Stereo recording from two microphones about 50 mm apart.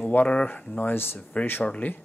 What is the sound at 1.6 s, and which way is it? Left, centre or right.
Speech, left.